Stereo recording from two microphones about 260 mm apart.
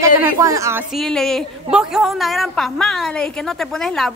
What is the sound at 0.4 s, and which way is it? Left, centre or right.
A woman's voice, centre.